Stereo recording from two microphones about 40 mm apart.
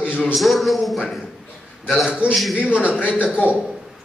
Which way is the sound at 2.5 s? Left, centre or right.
Right.